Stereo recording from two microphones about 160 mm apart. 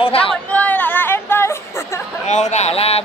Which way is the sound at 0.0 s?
35° left (ahead or behind).